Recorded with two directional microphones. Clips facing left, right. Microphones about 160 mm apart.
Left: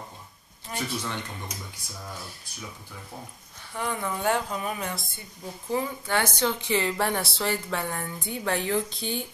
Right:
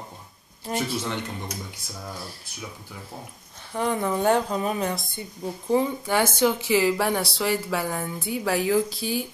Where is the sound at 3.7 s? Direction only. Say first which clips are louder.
Right 6 dB; 25° right (ahead or behind).